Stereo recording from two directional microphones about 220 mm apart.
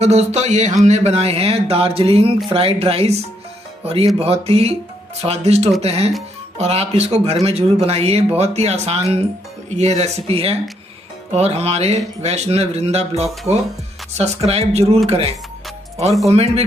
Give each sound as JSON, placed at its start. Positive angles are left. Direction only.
{"t": 0.0, "sound": "a sound", "side_deg": -30}
{"t": 0.8, "sound": "speech", "side_deg": -30}
{"t": 4.2, "sound": "speech", "side_deg": -25}